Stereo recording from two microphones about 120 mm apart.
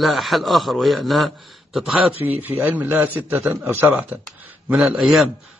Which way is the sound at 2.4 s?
15° right (ahead or behind).